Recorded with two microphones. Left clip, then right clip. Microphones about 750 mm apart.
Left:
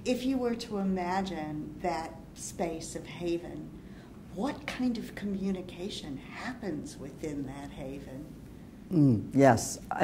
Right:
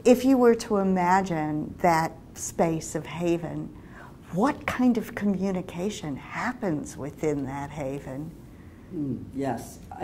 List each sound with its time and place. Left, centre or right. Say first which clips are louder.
0.0 s speech: right 12 dB; right
9.9 s a woman's voice: left 8 dB; left